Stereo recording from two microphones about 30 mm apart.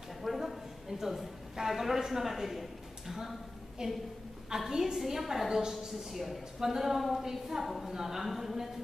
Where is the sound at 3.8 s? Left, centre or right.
Right.